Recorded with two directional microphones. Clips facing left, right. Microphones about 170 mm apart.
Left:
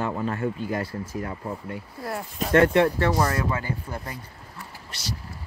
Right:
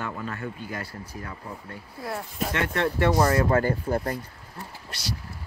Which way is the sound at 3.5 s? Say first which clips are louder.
Right 7 dB; 50° right (ahead or behind).